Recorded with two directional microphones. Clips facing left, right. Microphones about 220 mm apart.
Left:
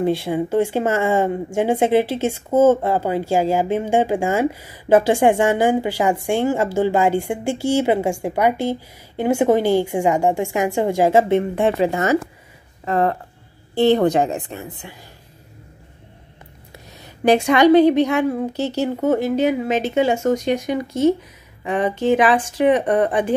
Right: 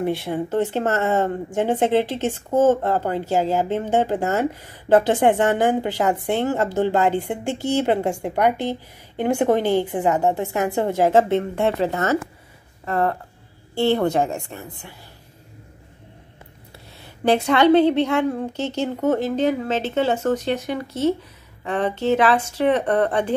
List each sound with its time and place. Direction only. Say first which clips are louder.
0.0 s speech: left 4 dB; 10° left (ahead or behind)
17.2 s speech: left 3 dB; 15° left (ahead or behind)